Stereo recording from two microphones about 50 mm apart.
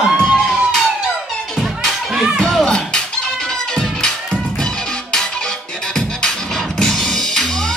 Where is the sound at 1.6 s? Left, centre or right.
Centre.